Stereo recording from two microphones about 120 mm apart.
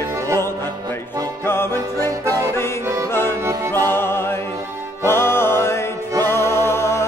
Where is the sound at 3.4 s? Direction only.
25° right (ahead or behind).